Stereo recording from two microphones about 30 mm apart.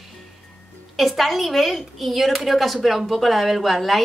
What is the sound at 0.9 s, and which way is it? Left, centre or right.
A woman's voice, centre.